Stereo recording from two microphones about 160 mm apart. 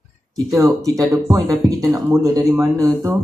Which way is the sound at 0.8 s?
20° right (ahead or behind).